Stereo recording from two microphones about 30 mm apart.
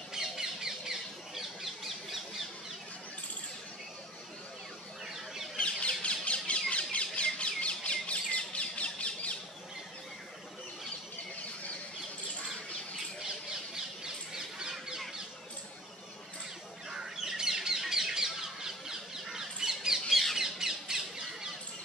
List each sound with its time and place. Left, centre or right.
0.1 s squawk: centre
5.6 s a sound: left
6.7 s squawk: left
14.0 s bird: right
16.9 s bird: centre
20.1 s bird: centre
20.3 s squawk: centre